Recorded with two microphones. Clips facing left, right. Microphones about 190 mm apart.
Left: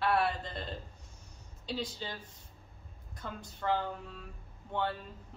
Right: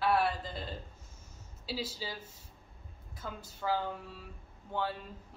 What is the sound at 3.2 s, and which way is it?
A woman's voice, 5° right (ahead or behind).